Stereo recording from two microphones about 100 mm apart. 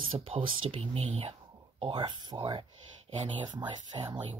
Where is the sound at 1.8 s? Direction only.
55° right (ahead or behind).